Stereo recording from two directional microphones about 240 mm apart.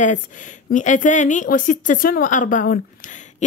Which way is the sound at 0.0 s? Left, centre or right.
Left.